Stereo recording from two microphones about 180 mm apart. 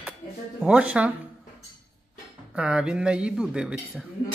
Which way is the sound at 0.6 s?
5° right (ahead or behind).